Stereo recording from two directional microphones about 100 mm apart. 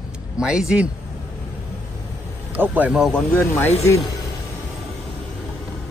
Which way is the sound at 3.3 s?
20° left (ahead or behind).